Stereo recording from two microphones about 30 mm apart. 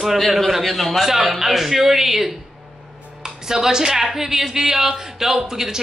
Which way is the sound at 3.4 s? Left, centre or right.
Centre.